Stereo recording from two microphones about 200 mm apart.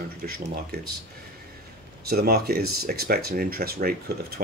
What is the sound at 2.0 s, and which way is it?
Speech, 50° right (ahead or behind).